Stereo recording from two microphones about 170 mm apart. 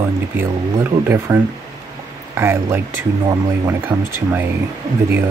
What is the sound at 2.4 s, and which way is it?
Speech, 15° right (ahead or behind).